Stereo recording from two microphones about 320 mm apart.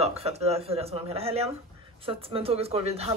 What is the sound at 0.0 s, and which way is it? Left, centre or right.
Speech, centre.